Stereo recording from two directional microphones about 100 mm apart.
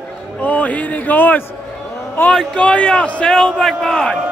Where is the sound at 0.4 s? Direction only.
15° left (ahead or behind).